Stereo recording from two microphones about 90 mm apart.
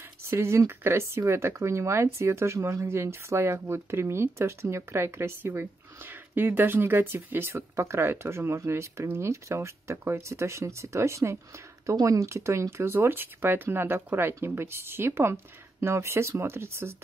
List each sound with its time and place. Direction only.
0.3 s speech: 30° right (ahead or behind)